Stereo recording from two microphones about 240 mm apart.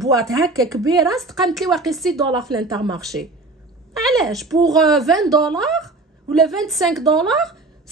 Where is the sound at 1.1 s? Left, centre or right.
Centre.